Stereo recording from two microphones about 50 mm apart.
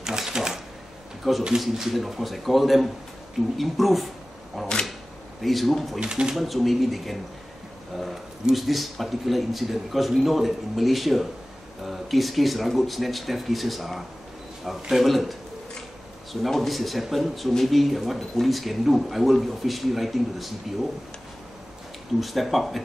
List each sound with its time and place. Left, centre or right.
0.0 s a sound: centre
1.2 s speech: centre
5.9 s speech: centre
6.3 s speech: centre
16.4 s speech: centre
22.2 s speech: centre